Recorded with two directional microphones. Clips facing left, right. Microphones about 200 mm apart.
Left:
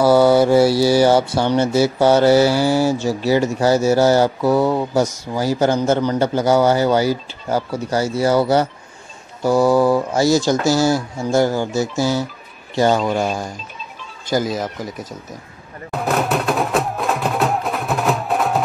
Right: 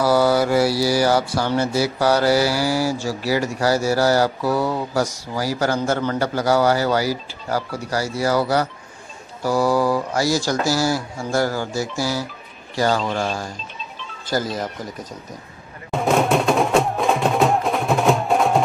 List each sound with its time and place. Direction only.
0.0 s a man's voice: 25° left (ahead or behind)
13.0 s speech: 5° left (ahead or behind)
15.9 s music: centre (ahead or behind)